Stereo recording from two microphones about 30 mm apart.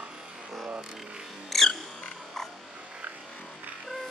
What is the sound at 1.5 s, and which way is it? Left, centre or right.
Music, centre.